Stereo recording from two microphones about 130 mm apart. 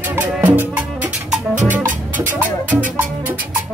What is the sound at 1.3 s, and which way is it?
Music, 70° right (ahead or behind).